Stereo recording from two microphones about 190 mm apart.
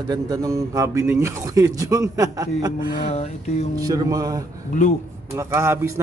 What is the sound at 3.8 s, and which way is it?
Music, 20° right (ahead or behind).